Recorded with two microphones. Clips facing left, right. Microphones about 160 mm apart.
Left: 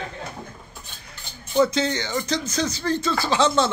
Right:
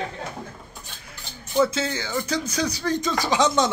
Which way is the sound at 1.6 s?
5° right (ahead or behind).